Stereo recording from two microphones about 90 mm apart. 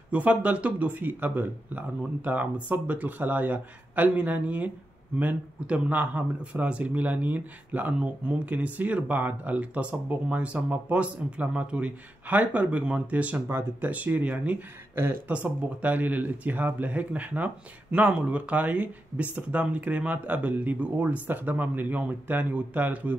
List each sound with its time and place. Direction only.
0.1 s speech: 15° right (ahead or behind)